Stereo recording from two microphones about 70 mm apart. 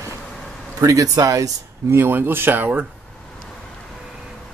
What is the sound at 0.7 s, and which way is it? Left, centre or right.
Speech, right.